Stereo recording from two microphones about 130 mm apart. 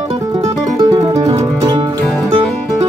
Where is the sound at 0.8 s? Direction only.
35° right (ahead or behind).